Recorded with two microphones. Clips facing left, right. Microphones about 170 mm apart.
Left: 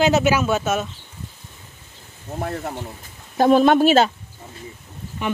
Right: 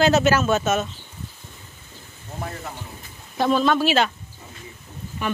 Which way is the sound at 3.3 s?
45° left (ahead or behind).